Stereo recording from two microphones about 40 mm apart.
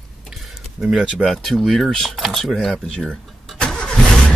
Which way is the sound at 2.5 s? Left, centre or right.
Centre.